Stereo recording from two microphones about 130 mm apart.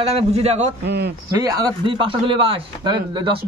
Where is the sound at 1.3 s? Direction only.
30° right (ahead or behind).